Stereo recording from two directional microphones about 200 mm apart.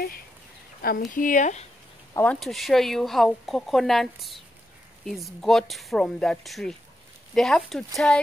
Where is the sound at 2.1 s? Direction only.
5° left (ahead or behind).